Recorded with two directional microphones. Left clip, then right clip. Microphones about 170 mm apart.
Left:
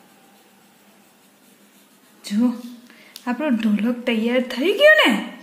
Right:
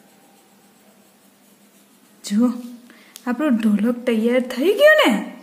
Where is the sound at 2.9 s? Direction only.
40° right (ahead or behind).